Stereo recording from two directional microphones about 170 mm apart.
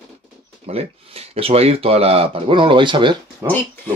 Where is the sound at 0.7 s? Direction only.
35° right (ahead or behind).